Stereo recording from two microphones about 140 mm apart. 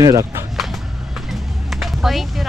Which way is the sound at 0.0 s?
25° right (ahead or behind).